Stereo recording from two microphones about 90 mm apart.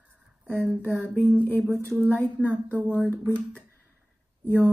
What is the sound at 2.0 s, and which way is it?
Speech, 20° left (ahead or behind).